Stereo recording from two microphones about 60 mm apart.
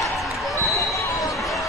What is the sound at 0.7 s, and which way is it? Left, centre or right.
Basketball bounce, left.